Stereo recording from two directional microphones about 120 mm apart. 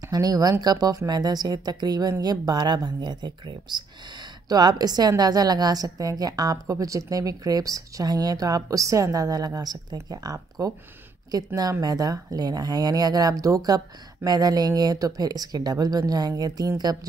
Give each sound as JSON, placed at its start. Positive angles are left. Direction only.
{"t": 0.1, "sound": "a woman's voice", "side_deg": -30}